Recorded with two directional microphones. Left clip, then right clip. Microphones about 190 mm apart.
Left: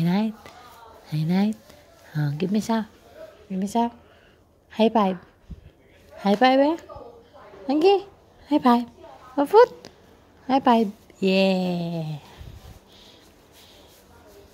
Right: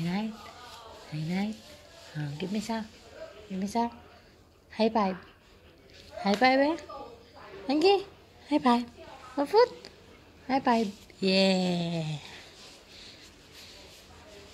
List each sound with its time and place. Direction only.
0.0 s a sound: 60° left (ahead or behind)
1.1 s speech: 60° left (ahead or behind)
3.5 s speech: 45° left (ahead or behind)
6.2 s a woman's voice: 35° left (ahead or behind); by 12.3 s 15° left (ahead or behind)